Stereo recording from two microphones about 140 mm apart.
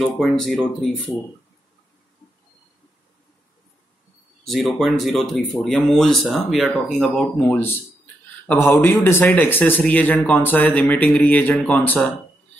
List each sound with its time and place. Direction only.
0.0 s speech: centre (ahead or behind)
4.5 s speech: centre (ahead or behind)
7.5 s speech: 15° left (ahead or behind)